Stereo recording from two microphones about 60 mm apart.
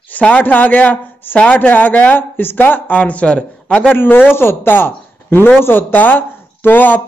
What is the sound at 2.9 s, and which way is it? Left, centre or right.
Speech, left.